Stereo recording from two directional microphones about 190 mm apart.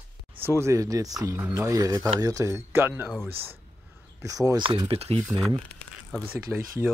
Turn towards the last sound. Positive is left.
turn(degrees=-15)  # may be behind; listen again after turning